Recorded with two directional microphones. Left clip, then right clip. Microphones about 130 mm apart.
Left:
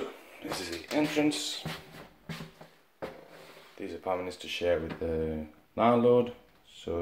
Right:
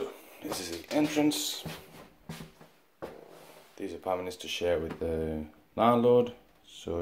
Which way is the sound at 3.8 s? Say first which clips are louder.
Even; 25° right (ahead or behind).